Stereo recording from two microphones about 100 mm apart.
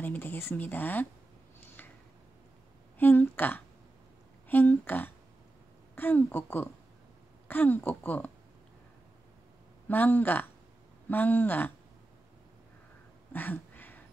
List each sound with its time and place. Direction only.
0.0 s speech: 20° left (ahead or behind)
3.0 s speech: 20° left (ahead or behind)
9.8 s speech: 15° left (ahead or behind)
13.3 s a sound: 20° left (ahead or behind)